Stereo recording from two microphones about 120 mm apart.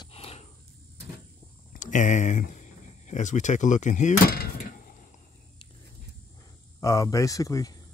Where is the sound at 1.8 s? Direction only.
90° left.